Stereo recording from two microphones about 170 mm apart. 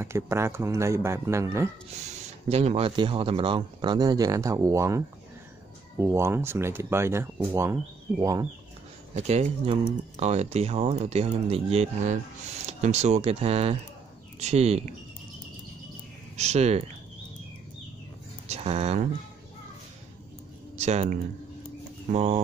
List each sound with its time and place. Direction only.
0.0 s speech: 15° right (ahead or behind)
2.0 s speech: 40° right (ahead or behind); by 8.5 s 20° right (ahead or behind)
9.1 s speech: 40° right (ahead or behind)
16.3 s speech: 40° right (ahead or behind)
18.5 s speech: 40° right (ahead or behind)
20.8 s speech: 40° right (ahead or behind)
22.1 s speech: 40° right (ahead or behind)